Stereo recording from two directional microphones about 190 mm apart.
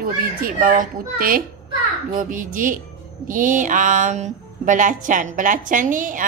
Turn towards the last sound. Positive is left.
turn(degrees=-45)  # may be behind; listen again after turning